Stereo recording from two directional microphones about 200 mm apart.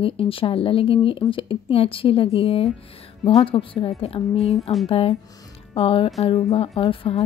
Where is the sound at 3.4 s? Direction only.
25° left (ahead or behind).